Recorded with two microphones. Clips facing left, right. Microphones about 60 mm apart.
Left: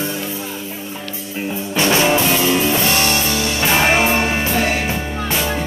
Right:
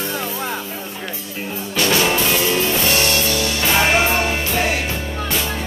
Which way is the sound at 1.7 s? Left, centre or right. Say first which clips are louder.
Left 2 dB; left.